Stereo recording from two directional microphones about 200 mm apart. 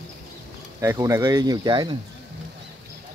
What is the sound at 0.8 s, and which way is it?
Speech, 15° right (ahead or behind).